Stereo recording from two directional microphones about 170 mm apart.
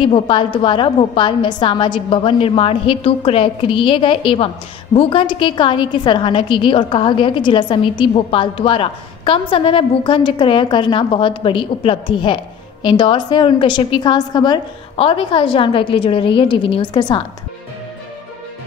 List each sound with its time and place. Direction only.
0.0 s a woman's voice: 30° left (ahead or behind)